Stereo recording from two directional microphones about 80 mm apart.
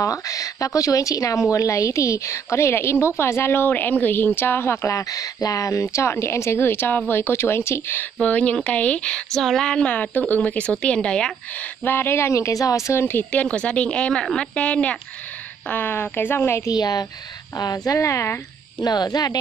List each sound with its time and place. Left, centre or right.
0.0 s a woman's voice: left; by 11.3 s centre
11.8 s a woman's voice: left
13.3 s speech: centre; by 16.7 s left
16.7 s speech: left
17.9 s a woman's voice: left
18.8 s speech: left